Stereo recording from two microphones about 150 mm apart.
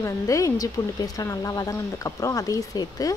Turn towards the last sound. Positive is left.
turn(degrees=25)  # may be behind; listen again after turning